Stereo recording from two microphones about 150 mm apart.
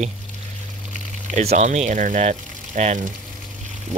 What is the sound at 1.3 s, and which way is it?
Speech, 45° right (ahead or behind).